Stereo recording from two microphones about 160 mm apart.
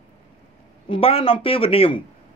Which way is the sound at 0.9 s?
35° left (ahead or behind).